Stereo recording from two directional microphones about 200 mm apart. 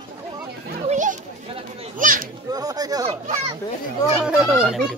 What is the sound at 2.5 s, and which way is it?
Speech, 20° right (ahead or behind).